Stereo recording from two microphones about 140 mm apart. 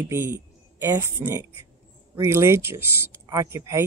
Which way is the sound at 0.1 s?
20° right (ahead or behind).